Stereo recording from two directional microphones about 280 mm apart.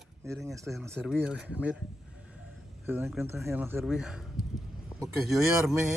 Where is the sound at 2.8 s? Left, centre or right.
Centre.